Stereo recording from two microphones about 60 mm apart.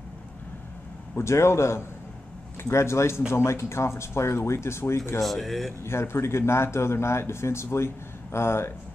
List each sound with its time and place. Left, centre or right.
1.1 s speech: left
5.2 s speech: centre
5.9 s speech: left